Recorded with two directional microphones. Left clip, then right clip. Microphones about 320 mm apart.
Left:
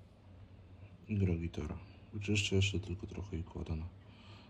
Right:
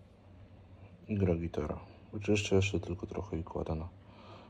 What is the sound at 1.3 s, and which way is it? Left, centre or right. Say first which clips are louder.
Speech: right 7 dB; right.